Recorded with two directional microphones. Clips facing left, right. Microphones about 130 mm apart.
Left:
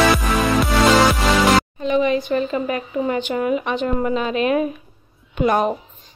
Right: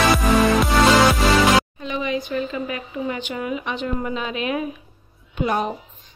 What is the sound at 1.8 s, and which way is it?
Speech, 45° left (ahead or behind).